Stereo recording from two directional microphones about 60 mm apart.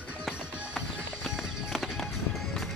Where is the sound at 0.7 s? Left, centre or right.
Centre.